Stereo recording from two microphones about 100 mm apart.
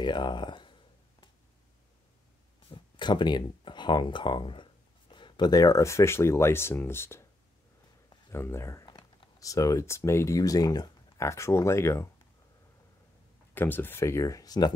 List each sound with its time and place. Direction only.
0.0 s speech: 50° left (ahead or behind)
2.7 s speech: 50° left (ahead or behind); by 7.2 s 25° left (ahead or behind)
8.3 s speech: 25° left (ahead or behind)
8.8 s typing: 60° left (ahead or behind)
9.4 s speech: 35° left (ahead or behind)
13.6 s speech: 20° left (ahead or behind); by 14.7 s 40° left (ahead or behind)